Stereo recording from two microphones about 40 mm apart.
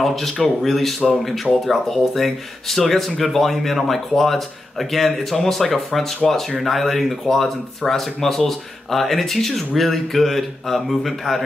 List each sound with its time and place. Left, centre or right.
0.0 s speech: centre